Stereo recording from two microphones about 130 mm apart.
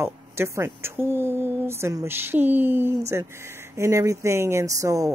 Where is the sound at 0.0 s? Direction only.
20° right (ahead or behind).